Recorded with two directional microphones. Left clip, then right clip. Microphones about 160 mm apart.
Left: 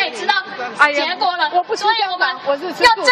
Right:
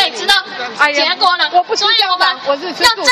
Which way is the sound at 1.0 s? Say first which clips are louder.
Right 5 dB; 25° left (ahead or behind).